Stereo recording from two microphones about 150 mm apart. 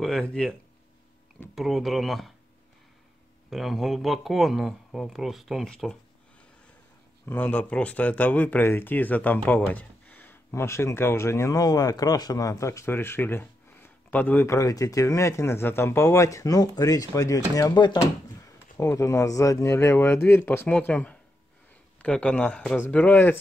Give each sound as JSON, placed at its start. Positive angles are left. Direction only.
{"t": 0.0, "sound": "speech", "side_deg": 5}
{"t": 3.4, "sound": "speech", "side_deg": 0}
{"t": 7.2, "sound": "speech", "side_deg": 10}